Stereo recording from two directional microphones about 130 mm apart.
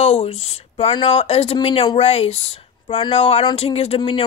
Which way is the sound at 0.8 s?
45° left (ahead or behind).